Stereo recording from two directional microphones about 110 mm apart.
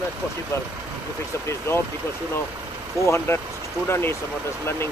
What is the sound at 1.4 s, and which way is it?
Speech, 25° left (ahead or behind).